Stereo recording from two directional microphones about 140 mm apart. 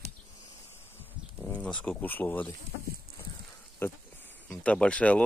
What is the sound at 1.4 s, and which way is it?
Speech, 10° left (ahead or behind).